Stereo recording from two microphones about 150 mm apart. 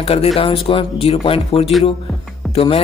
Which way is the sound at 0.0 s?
40° left (ahead or behind).